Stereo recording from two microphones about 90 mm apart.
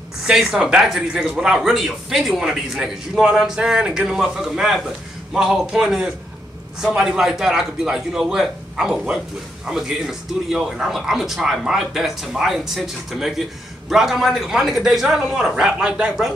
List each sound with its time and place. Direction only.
0.3 s speech: 5° right (ahead or behind)